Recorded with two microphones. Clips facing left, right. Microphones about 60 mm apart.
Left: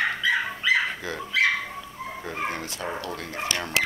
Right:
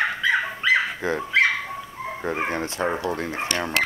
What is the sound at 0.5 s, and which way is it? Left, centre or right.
Dog, right.